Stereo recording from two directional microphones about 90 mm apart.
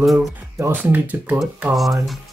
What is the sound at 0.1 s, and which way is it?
Speech, 30° right (ahead or behind).